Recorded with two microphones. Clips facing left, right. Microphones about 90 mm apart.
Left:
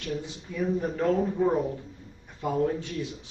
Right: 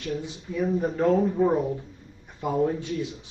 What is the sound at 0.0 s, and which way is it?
A man's voice, 20° right (ahead or behind).